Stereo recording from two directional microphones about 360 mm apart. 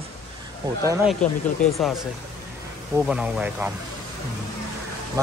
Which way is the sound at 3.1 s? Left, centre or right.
Centre.